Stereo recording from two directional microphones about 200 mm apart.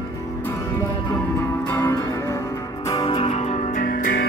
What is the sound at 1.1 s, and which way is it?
Music, 10° left (ahead or behind).